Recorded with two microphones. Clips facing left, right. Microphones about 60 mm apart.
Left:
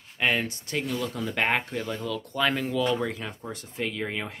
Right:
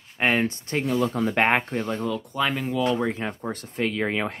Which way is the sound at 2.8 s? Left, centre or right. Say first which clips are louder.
Right 5 dB; right.